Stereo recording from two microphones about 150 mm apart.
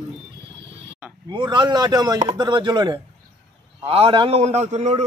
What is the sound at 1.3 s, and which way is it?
A man's voice, 30° right (ahead or behind).